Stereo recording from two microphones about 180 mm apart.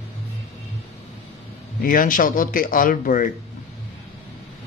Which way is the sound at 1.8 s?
50° left (ahead or behind).